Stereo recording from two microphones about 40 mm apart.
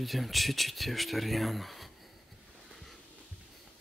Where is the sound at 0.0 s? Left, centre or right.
Centre.